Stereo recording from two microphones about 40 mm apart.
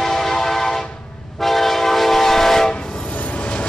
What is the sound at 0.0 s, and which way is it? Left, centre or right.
Train, centre.